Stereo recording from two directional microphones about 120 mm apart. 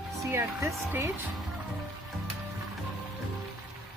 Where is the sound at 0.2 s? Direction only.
20° right (ahead or behind).